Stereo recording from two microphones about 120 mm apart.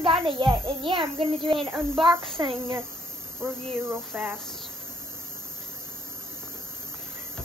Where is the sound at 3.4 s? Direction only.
20° right (ahead or behind).